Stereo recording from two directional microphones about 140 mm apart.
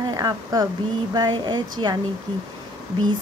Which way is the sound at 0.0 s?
25° right (ahead or behind).